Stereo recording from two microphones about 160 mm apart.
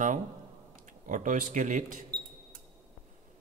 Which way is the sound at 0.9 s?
50° right (ahead or behind).